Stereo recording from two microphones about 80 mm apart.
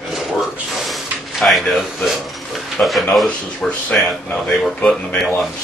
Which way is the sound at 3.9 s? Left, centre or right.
Centre.